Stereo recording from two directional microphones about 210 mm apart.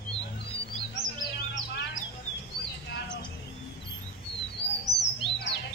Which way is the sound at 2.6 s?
50° left (ahead or behind).